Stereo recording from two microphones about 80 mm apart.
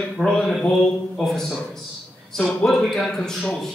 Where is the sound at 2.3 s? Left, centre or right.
Centre.